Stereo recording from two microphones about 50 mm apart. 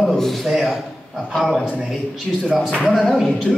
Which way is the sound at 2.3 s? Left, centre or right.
Centre.